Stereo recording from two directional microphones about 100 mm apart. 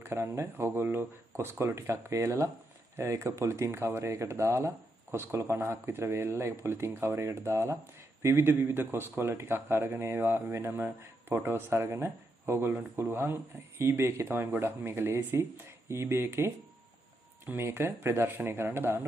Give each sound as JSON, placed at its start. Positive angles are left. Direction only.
{"t": 0.0, "sound": "speech", "side_deg": -25}
{"t": 10.4, "sound": "speech", "side_deg": -30}
{"t": 10.7, "sound": "speech", "side_deg": -20}